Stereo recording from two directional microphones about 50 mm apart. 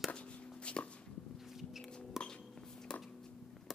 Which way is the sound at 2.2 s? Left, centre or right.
Centre.